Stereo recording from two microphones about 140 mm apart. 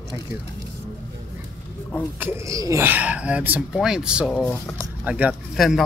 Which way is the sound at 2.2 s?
20° right (ahead or behind).